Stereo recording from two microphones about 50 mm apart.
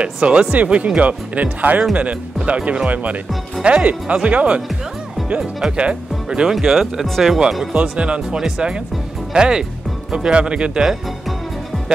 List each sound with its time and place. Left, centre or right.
0.0 s speech: right
5.7 s speech: right
6.5 s speech: centre
7.7 s speech: right